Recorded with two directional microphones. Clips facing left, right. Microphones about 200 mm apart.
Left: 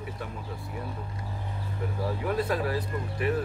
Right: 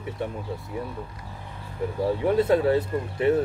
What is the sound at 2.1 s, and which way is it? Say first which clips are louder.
Speech: right 8 dB; 25° right (ahead or behind).